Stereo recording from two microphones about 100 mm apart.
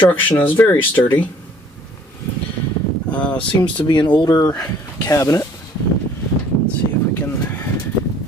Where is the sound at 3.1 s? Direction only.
15° left (ahead or behind).